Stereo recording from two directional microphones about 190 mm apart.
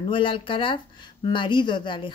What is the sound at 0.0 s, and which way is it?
Speech, 25° left (ahead or behind).